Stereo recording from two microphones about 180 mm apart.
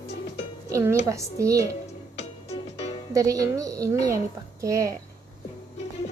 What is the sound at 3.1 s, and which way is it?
A woman's voice, 20° right (ahead or behind).